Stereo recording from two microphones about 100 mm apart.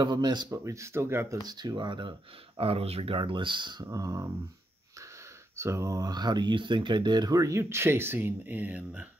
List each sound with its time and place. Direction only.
0.0 s speech: 45° right (ahead or behind)
0.5 s speech: 30° right (ahead or behind)
1.5 s speech: 45° right (ahead or behind)
3.8 s speech: 35° right (ahead or behind)
5.6 s speech: 30° right (ahead or behind)